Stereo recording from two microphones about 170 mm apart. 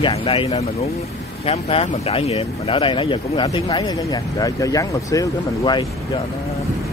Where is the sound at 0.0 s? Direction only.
35° left (ahead or behind).